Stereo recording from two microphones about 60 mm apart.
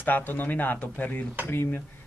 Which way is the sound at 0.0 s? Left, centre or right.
Left.